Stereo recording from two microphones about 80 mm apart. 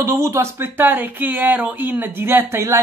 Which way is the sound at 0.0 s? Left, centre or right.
Right.